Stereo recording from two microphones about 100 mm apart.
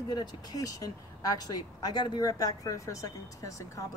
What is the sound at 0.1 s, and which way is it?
Speech, 40° left (ahead or behind).